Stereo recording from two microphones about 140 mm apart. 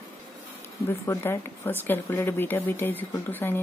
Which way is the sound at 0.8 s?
20° left (ahead or behind).